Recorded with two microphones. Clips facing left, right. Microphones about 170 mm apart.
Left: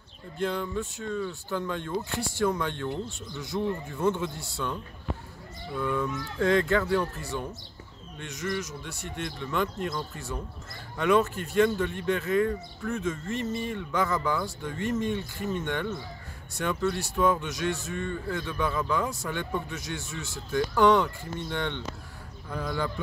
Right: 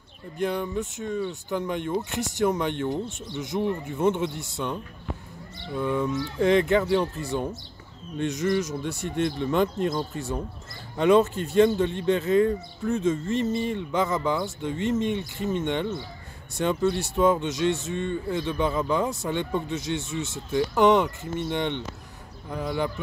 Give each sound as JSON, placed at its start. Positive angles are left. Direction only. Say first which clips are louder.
{"t": 0.4, "sound": "a man's voice", "louder": "right 3 dB", "side_deg": -15}
{"t": 5.8, "sound": "a man's voice", "louder": "right 4 dB", "side_deg": -20}